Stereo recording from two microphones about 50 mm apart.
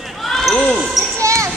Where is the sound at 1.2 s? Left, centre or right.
Right.